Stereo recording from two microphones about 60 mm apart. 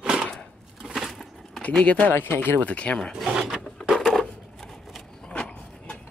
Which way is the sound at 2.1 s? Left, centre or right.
Left.